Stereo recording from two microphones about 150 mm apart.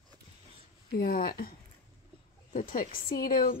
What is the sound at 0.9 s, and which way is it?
Speech, 80° left.